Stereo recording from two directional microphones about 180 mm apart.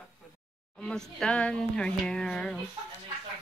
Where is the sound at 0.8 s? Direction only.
5° left (ahead or behind).